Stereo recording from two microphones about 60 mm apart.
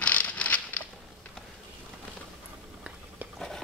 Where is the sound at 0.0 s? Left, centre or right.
Left.